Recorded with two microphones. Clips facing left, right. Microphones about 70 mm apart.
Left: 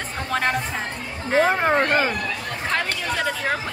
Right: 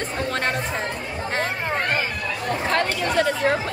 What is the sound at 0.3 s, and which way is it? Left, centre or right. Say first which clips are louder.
Speech: left 4 dB; centre.